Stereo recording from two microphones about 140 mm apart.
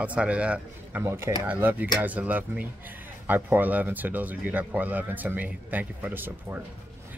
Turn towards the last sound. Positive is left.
turn(degrees=-15)  # may be behind; listen again after turning